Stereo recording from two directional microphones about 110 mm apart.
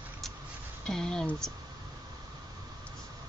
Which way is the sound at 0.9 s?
5° left (ahead or behind).